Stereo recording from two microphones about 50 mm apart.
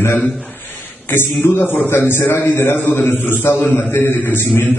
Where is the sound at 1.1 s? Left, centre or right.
Left.